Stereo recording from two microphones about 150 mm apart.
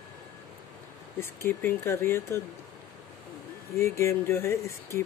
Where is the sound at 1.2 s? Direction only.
15° left (ahead or behind).